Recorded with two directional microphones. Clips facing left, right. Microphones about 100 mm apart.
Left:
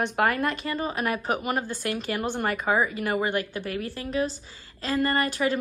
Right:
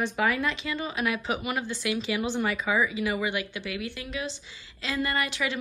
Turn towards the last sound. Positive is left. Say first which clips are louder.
# left 5 dB
turn(degrees=40)  # may be behind; listen again after turning